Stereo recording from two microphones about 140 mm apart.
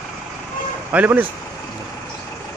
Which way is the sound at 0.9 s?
15° right (ahead or behind).